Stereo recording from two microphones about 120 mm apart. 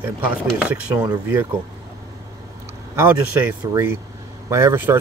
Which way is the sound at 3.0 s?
15° right (ahead or behind).